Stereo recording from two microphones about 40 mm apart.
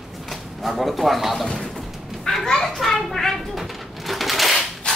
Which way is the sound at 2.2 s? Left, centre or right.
Centre.